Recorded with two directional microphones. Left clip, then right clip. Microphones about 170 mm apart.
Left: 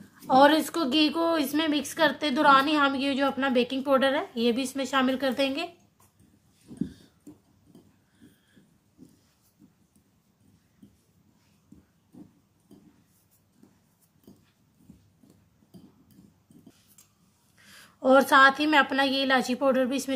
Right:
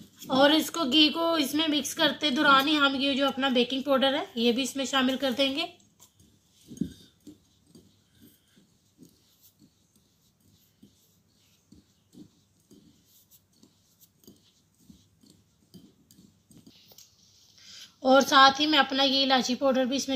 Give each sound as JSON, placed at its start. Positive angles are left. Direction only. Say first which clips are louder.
{"t": 0.3, "sound": "a woman's voice", "louder": "left 3 dB", "side_deg": 25}
{"t": 18.0, "sound": "a woman's voice", "louder": "left 1 dB", "side_deg": 35}